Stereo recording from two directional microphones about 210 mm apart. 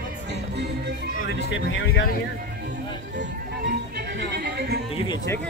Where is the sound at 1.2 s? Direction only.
55° left (ahead or behind).